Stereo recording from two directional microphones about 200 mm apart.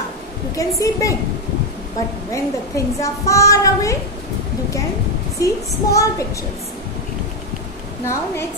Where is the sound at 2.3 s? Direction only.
15° left (ahead or behind).